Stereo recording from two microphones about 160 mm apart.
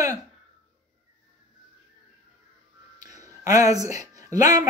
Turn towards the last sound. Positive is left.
turn(degrees=-20)  # may be behind; listen again after turning